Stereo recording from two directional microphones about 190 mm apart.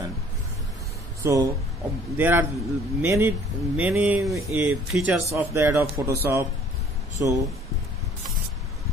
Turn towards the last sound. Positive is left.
turn(degrees=-15)  # may be behind; listen again after turning